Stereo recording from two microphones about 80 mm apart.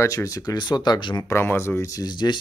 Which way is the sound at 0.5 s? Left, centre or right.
Left.